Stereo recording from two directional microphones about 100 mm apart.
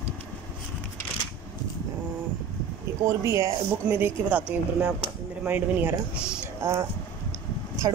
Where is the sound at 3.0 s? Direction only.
30° right (ahead or behind).